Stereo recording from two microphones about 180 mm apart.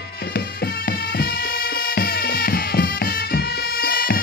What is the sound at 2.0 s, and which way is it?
Music, 55° left (ahead or behind).